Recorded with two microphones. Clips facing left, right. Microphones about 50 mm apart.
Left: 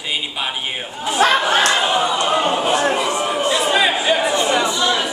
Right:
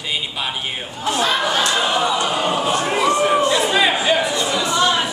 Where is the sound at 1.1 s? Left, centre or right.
Left.